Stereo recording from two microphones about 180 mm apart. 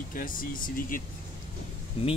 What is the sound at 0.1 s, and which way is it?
Speech, 50° left (ahead or behind).